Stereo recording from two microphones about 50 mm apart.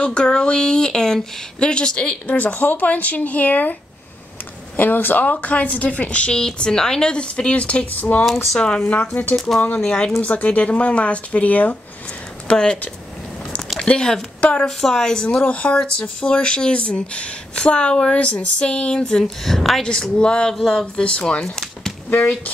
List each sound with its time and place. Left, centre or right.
0.0 s speech: centre
2.2 s speech: left
4.7 s a woman's voice: left
6.4 s a woman's voice: centre; by 8.3 s left
8.5 s speech: centre
8.8 s speech: left
9.8 s speech: centre
10.2 s a woman's voice: left
14.8 s speech: centre
15.4 s a woman's voice: left
15.8 s speech: centre
19.9 s speech: centre
20.5 s a sound: centre
20.8 s speech: left